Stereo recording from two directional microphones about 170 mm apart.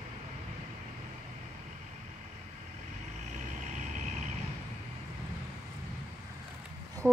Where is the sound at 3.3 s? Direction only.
45° right (ahead or behind).